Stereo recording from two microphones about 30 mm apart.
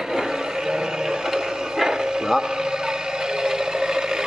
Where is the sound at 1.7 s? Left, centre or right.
Centre.